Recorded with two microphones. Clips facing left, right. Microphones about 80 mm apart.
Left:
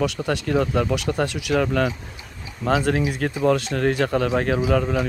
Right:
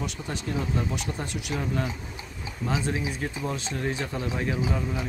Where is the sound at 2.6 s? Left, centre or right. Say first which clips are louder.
Left 8 dB; left.